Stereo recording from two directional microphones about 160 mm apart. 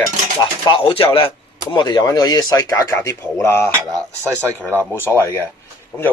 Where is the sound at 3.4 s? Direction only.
15° left (ahead or behind).